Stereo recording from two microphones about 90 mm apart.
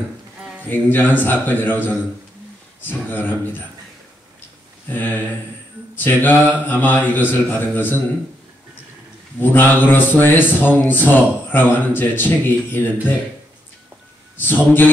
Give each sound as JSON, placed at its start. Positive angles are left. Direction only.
{"t": 0.7, "sound": "speech", "side_deg": 20}
{"t": 4.8, "sound": "speech", "side_deg": 20}
{"t": 9.4, "sound": "speech", "side_deg": 20}
{"t": 14.4, "sound": "speech", "side_deg": 20}